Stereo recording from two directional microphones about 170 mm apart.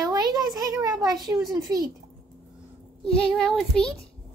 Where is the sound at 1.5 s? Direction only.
20° right (ahead or behind).